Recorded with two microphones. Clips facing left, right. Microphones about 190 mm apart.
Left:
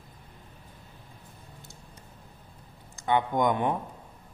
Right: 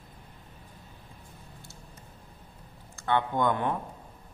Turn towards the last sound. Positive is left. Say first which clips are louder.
# left 2 dB
turn(degrees=15)  # may be behind; listen again after turning